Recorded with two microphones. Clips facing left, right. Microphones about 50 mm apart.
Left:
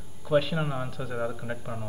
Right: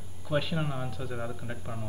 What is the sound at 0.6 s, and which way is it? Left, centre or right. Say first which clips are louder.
Speech: left 3 dB; centre.